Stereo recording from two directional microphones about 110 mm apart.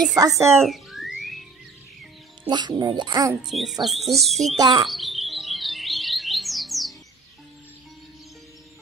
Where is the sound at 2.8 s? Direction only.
40° right (ahead or behind).